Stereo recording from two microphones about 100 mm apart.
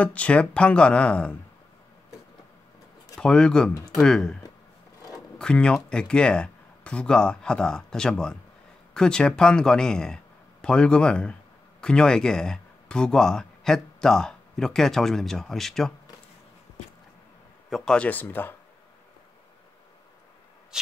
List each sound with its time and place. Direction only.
0.0 s speech: 15° left (ahead or behind)
3.2 s speech: 10° left (ahead or behind)
5.4 s speech: 10° left (ahead or behind)
17.6 s speech: 5° left (ahead or behind)